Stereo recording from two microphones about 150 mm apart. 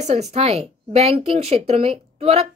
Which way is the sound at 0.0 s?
45° right (ahead or behind).